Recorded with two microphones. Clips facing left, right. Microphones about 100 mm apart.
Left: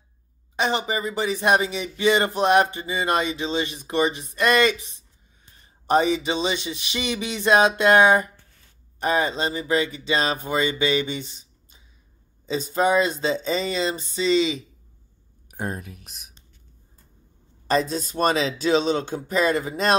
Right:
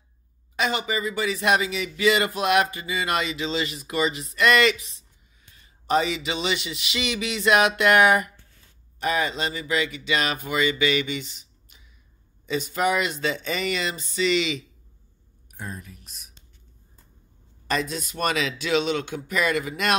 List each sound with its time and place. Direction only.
0.6 s speech: 30° left (ahead or behind)
5.9 s speech: 35° left (ahead or behind)
15.5 s speech: 65° left (ahead or behind)
17.6 s speech: 35° left (ahead or behind)